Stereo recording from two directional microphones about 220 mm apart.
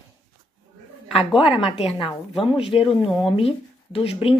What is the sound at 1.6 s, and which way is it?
Speech, 25° left (ahead or behind).